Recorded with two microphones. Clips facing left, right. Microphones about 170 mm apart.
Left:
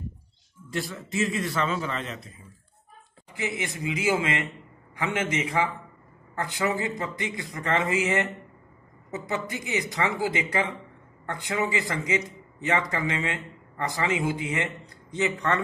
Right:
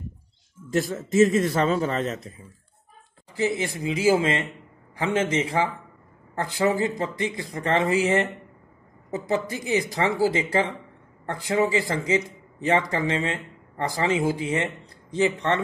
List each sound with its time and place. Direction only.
0.7 s speech: 45° right (ahead or behind)
3.3 s speech: 35° right (ahead or behind)